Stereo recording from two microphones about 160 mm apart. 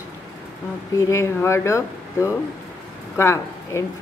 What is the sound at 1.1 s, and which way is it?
Speech, 15° left (ahead or behind).